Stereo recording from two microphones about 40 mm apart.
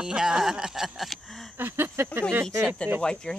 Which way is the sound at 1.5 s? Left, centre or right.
Right.